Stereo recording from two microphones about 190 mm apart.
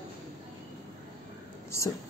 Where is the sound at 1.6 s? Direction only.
15° left (ahead or behind).